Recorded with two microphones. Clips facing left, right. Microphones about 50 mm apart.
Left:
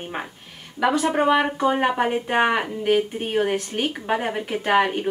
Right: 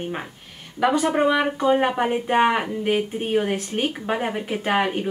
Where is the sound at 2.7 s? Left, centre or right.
Centre.